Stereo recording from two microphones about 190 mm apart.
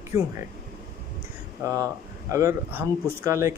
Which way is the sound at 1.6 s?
15° right (ahead or behind).